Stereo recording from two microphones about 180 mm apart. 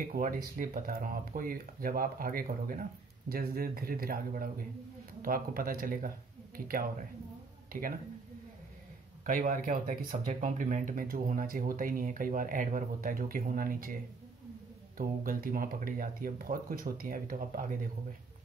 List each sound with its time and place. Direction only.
0.0 s speech: 50° right (ahead or behind)
9.2 s speech: 50° right (ahead or behind)
15.0 s speech: 50° right (ahead or behind)